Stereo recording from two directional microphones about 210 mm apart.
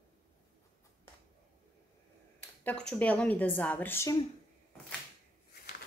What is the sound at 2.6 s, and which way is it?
A woman's voice, 5° left (ahead or behind).